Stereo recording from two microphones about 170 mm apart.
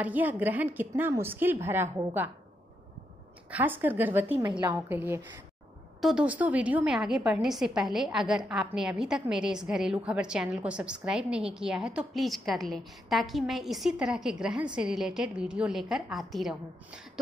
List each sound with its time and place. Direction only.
0.0 s a woman's voice: 10° right (ahead or behind)
3.4 s a woman's voice: 10° right (ahead or behind)
4.5 s a woman's voice: 25° right (ahead or behind)
4.7 s a woman's voice: 10° right (ahead or behind)